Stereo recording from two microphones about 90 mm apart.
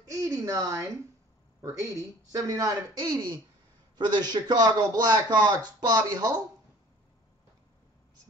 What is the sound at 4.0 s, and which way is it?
A man's voice, 50° right (ahead or behind).